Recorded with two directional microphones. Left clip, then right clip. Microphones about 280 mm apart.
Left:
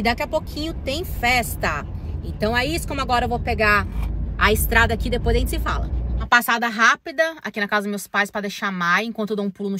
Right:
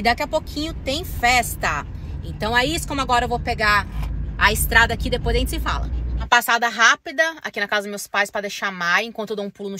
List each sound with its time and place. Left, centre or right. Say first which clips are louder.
0.7 s a woman's voice: right 1 dB; centre